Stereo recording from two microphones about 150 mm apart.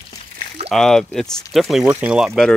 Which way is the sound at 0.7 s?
5° left (ahead or behind).